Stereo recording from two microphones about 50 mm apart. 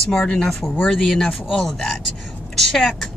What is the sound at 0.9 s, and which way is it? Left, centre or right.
A woman's voice, centre.